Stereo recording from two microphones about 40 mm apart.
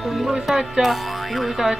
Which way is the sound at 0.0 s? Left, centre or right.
Centre.